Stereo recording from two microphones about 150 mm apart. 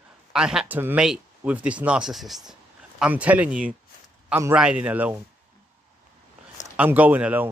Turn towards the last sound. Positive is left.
turn(degrees=-10)  # may be behind; listen again after turning